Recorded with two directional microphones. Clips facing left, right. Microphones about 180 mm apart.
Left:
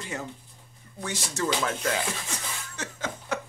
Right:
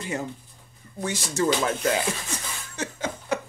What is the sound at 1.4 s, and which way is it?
Speech, 20° right (ahead or behind).